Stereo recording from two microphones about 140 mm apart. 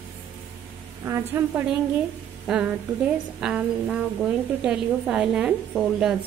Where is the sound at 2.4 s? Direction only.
5° right (ahead or behind).